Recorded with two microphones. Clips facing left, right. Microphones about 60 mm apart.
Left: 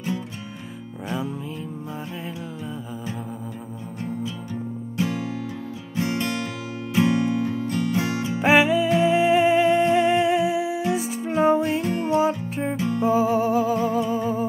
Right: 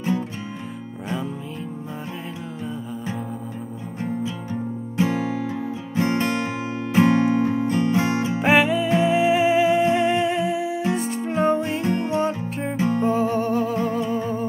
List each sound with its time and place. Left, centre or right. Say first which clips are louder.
4.9 s music: right 4 dB; right
8.4 s music: left 2 dB; centre
12.7 s music: right 6 dB; right
13.0 s music: left 5 dB; centre